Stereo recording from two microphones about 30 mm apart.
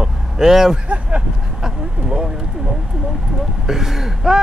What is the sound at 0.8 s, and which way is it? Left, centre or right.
Speech, right.